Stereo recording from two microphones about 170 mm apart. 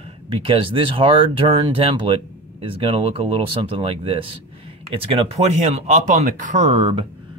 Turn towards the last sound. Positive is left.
turn(degrees=-35)  # may be behind; listen again after turning